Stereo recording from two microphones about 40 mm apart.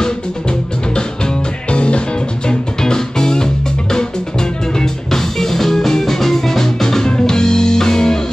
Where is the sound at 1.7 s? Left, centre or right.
Left.